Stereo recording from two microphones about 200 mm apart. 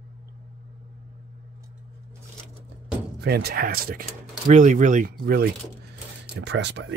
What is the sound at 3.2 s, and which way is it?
Speech, 50° right (ahead or behind).